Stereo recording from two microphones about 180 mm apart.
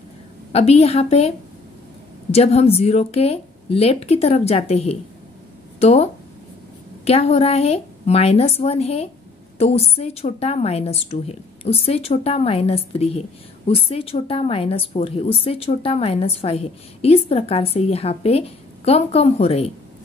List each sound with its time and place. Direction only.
0.5 s a woman's voice: 35° left (ahead or behind)
2.3 s a woman's voice: 35° left (ahead or behind)
7.1 s a woman's voice: 35° left (ahead or behind)